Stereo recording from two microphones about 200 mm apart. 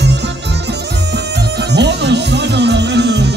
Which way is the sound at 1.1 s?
60° right (ahead or behind).